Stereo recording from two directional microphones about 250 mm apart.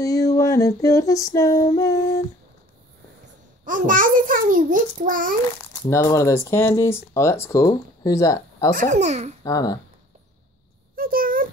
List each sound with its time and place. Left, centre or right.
0.0 s female singing: centre
3.6 s a child's voice: right
5.7 s speech: centre
8.7 s a child's voice: right
9.4 s speech: centre
11.0 s a sound: right